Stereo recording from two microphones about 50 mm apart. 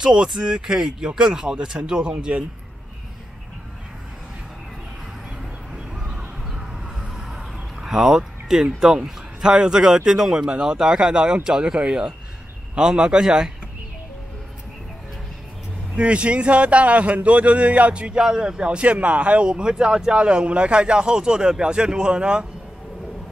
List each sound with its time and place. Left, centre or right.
0.0 s speech: centre
5.9 s a sound: centre
8.7 s speech: centre
16.0 s a man's voice: right